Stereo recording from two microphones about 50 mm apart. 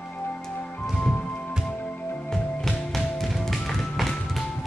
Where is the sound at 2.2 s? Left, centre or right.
Centre.